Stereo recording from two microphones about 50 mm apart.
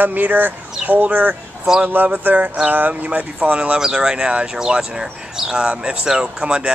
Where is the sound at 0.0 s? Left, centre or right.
Right.